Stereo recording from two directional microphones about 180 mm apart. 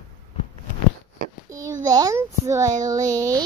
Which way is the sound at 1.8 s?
20° right (ahead or behind).